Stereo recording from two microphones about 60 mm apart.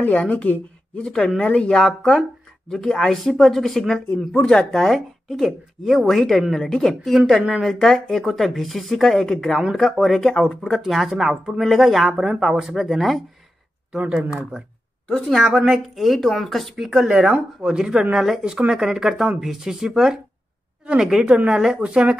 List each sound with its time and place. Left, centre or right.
0.0 s a woman's voice: left
4.8 s speech: centre
10.8 s speech: centre
15.2 s speech: centre
16.0 s speech: centre
18.1 s speech: centre